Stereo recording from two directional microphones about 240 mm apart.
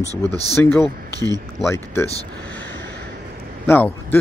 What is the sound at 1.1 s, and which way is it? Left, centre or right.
Speech, centre.